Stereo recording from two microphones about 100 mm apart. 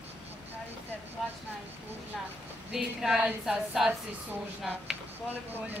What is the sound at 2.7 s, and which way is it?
Speech, 5° right (ahead or behind).